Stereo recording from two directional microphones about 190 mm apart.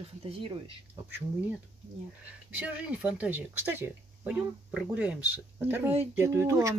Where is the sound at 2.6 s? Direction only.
5° right (ahead or behind).